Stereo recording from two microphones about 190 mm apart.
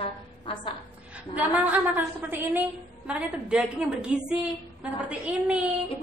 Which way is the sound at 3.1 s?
5° right (ahead or behind).